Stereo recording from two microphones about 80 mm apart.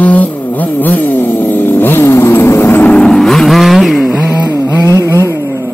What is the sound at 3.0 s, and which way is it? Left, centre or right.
Vehicle, centre.